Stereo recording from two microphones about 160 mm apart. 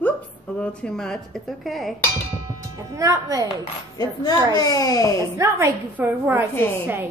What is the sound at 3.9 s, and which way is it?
A child's voice, 25° left (ahead or behind).